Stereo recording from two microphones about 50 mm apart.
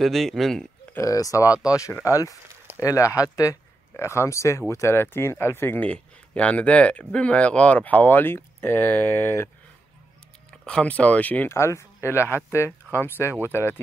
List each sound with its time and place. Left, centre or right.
0.0 s speech: centre
0.9 s speech: left
2.8 s speech: left
3.9 s speech: left
4.9 s speech: left
5.8 s speech: left
10.6 s speech: centre
11.4 s speech: left